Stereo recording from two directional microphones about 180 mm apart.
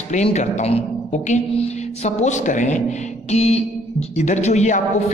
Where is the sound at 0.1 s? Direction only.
40° left (ahead or behind).